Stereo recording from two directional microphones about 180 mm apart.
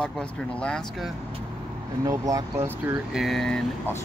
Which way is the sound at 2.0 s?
20° right (ahead or behind).